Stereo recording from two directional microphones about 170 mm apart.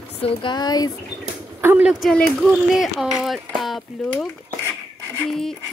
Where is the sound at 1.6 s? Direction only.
10° right (ahead or behind).